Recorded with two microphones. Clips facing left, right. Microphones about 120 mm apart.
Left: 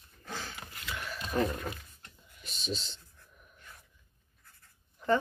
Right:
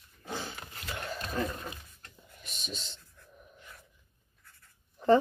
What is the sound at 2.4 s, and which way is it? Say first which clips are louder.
Speech: left 6 dB; 30° left (ahead or behind).